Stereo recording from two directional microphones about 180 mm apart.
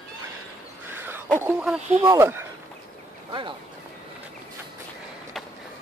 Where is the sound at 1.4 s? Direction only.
10° right (ahead or behind).